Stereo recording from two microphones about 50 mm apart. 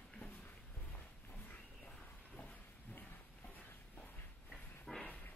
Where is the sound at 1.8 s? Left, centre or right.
Left.